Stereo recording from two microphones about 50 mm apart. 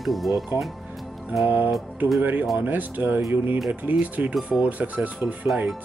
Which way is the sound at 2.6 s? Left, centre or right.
Right.